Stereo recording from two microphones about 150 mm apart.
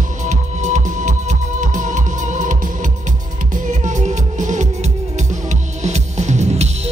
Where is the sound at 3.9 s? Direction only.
55° right (ahead or behind).